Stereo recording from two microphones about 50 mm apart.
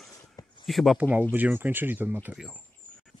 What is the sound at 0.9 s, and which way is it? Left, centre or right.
Speech, right.